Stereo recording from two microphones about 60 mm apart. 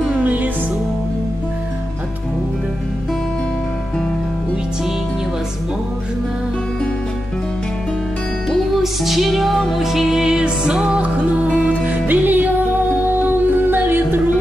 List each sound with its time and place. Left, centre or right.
0.1 s music: right
8.5 s music: centre; by 14.2 s right